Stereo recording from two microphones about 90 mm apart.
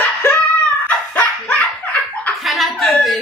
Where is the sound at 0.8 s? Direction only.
15° left (ahead or behind).